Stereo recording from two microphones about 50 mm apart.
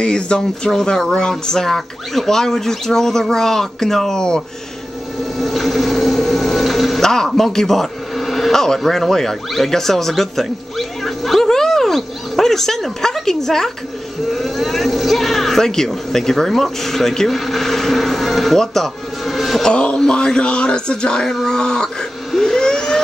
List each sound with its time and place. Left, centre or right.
0.0 s speech: centre
5.4 s speech: centre
19.6 s speech: centre
22.3 s vehicle: centre